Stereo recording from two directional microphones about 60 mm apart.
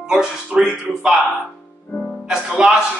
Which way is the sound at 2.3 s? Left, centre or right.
Centre.